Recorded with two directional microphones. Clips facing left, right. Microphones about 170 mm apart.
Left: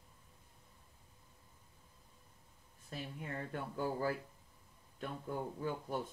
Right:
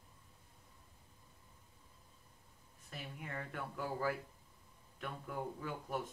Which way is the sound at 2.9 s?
30° left (ahead or behind).